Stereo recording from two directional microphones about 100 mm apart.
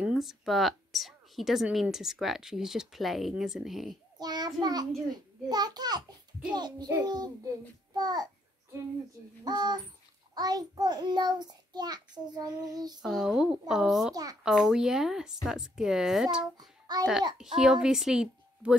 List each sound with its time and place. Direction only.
0.1 s speech: 5° right (ahead or behind)
4.2 s child singing: 45° right (ahead or behind)
5.1 s a child's voice: 40° right (ahead or behind)
9.4 s a child's voice: 40° right (ahead or behind)
13.0 s speech: 5° right (ahead or behind)
16.5 s child singing: 40° right (ahead or behind)
17.4 s a woman's voice: 5° right (ahead or behind)